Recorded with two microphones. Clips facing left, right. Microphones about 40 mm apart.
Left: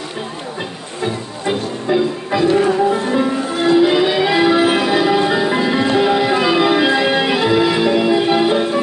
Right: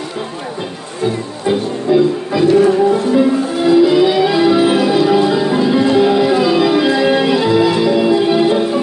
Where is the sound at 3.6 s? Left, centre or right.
Left.